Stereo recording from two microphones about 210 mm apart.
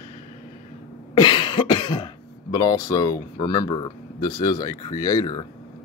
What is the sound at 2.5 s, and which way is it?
Speech, 15° left (ahead or behind).